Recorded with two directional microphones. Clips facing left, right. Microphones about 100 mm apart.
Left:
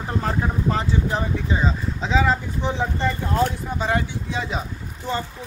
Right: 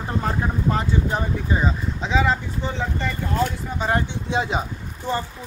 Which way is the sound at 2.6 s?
20° left (ahead or behind).